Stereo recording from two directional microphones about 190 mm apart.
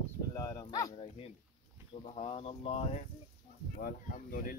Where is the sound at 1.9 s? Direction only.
35° left (ahead or behind).